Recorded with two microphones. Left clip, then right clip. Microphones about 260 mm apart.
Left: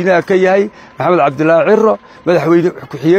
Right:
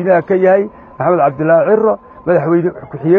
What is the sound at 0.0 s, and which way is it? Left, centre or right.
A man's voice, left.